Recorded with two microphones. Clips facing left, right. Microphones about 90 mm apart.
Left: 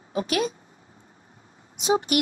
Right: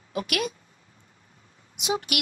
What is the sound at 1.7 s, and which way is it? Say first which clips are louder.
Speech: left 6 dB; 35° left (ahead or behind).